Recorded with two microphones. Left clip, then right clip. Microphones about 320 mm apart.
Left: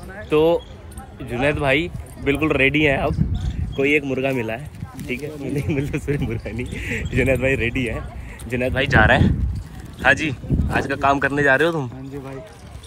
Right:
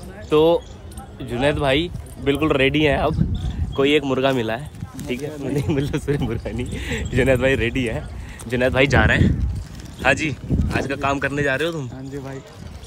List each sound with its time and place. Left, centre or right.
0.3 s speech: centre
5.0 s speech: right
5.7 s speech: centre
8.9 s speech: centre